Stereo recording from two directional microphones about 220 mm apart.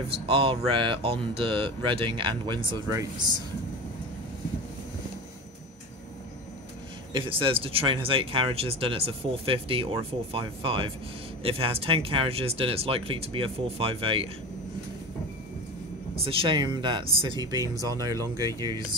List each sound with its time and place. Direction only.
0.1 s speech: 25° right (ahead or behind)
7.1 s speech: 20° right (ahead or behind)
16.2 s speech: 25° right (ahead or behind)